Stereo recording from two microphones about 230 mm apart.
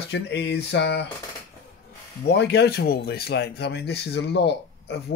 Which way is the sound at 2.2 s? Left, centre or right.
Left.